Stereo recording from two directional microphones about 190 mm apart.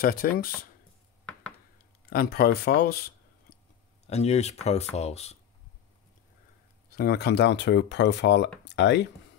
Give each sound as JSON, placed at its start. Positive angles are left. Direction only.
{"t": 0.0, "sound": "speech", "side_deg": 50}
{"t": 2.0, "sound": "speech", "side_deg": 55}
{"t": 4.1, "sound": "speech", "side_deg": 35}
{"t": 7.0, "sound": "speech", "side_deg": 55}